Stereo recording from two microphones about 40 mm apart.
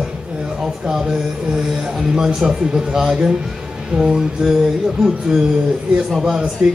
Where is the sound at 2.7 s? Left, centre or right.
Centre.